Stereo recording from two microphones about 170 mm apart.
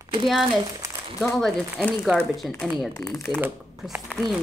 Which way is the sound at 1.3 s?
5° left (ahead or behind).